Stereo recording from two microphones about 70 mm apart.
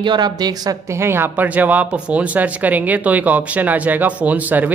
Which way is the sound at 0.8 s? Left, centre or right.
Right.